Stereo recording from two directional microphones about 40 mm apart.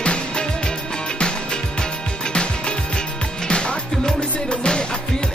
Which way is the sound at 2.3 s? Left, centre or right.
Left.